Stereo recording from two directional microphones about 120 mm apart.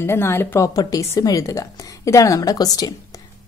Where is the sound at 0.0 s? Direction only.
20° left (ahead or behind).